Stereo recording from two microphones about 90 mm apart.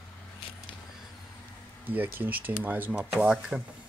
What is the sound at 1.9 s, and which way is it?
Speech, 20° right (ahead or behind).